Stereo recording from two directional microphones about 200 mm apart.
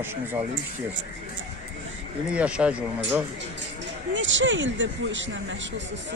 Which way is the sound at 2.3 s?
5° right (ahead or behind).